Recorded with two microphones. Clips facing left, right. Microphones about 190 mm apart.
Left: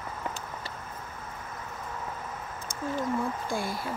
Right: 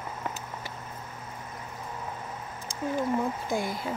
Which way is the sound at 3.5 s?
20° right (ahead or behind).